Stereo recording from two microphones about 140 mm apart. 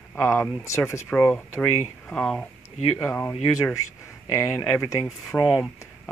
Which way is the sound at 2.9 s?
15° left (ahead or behind).